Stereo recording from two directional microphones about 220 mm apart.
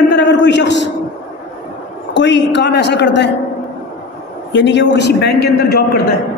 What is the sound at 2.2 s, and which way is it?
A man's voice, 55° left (ahead or behind).